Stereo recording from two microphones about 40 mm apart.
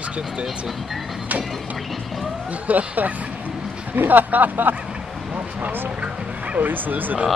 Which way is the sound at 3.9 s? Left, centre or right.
Right.